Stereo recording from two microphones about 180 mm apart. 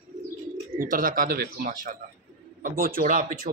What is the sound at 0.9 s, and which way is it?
A man's voice, 50° right (ahead or behind).